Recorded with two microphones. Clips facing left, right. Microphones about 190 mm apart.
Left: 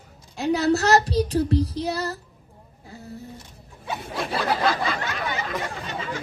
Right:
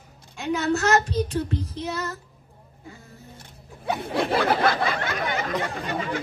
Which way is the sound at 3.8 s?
60° right (ahead or behind).